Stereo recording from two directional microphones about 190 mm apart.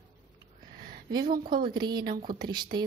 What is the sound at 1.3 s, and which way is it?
Speech, 50° right (ahead or behind).